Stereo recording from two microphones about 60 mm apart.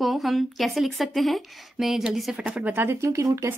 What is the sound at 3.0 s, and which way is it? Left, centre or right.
Speech, right.